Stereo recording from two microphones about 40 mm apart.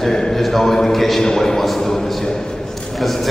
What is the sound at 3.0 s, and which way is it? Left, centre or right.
Speech, centre.